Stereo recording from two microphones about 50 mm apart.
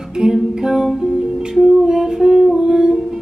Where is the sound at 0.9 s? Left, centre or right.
Centre.